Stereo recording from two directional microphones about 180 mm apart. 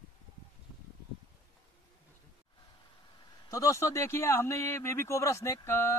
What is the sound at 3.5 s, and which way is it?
Speech, 15° left (ahead or behind).